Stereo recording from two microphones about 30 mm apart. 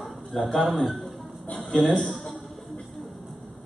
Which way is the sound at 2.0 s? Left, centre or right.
Centre.